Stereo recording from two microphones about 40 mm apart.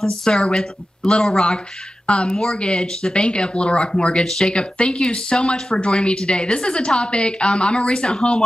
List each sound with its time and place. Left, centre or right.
0.0 s a woman's voice: centre
2.3 s a woman's voice: centre
2.6 s a woman's voice: centre
4.2 s a woman's voice: centre
4.6 s a woman's voice: left